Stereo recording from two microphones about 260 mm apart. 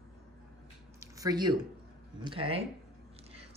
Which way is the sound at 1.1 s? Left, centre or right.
Centre.